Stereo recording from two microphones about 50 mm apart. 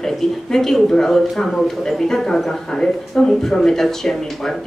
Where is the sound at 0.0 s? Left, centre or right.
Centre.